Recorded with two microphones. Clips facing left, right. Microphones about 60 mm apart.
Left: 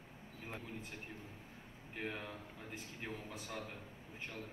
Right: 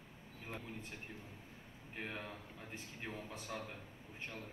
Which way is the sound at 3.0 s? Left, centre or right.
Right.